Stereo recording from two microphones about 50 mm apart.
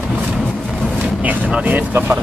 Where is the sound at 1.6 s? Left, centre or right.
Right.